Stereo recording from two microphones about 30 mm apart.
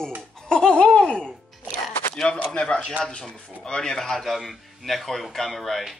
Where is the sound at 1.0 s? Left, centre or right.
Left.